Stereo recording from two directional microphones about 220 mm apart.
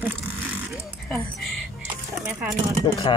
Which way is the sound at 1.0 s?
5° left (ahead or behind).